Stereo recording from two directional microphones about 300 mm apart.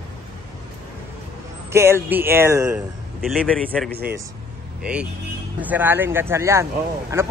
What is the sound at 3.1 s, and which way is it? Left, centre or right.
A man's voice, centre.